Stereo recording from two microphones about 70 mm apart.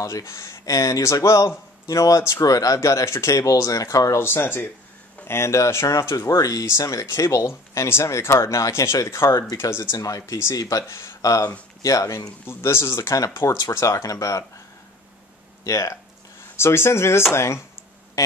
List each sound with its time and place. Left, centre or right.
0.0 s speech: left
4.2 s speech: left
9.9 s speech: left
12.4 s speech: left
15.6 s speech: left
16.5 s speech: left